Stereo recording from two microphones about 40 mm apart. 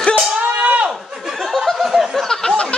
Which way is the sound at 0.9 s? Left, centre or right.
Centre.